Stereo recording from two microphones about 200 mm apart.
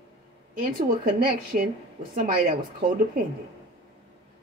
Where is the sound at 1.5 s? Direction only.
45° right (ahead or behind).